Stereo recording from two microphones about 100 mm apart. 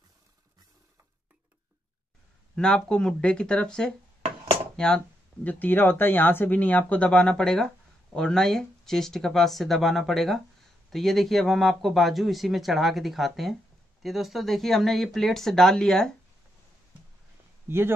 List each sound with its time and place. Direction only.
2.5 s speech: 5° left (ahead or behind)
17.6 s speech: 25° right (ahead or behind)